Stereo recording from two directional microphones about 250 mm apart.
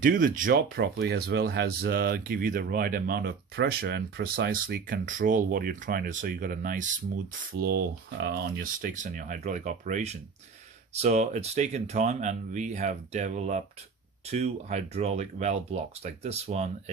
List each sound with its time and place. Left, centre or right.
0.0 s speech: right